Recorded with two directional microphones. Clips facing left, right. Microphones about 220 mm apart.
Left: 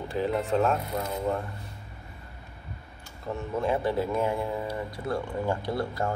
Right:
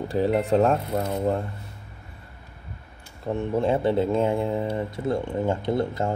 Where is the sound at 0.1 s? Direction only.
35° right (ahead or behind).